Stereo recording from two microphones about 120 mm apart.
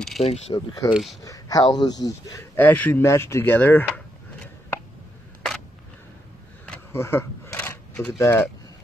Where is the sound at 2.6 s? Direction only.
15° left (ahead or behind).